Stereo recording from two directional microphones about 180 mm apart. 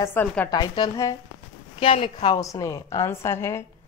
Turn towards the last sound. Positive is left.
turn(degrees=15)  # may be behind; listen again after turning